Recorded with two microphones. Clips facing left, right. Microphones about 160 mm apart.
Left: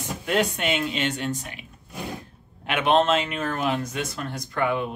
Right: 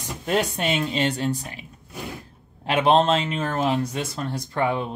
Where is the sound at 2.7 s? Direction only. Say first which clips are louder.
Right 2 dB; 35° right (ahead or behind).